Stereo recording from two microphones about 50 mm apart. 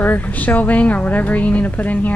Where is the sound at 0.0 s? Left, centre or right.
Left.